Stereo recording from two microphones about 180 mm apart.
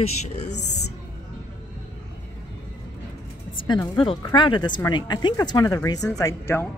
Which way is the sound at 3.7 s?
25° left (ahead or behind).